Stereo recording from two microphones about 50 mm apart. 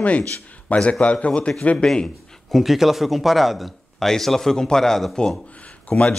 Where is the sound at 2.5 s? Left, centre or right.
Centre.